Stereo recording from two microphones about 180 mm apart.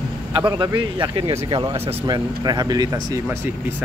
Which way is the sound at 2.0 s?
20° right (ahead or behind).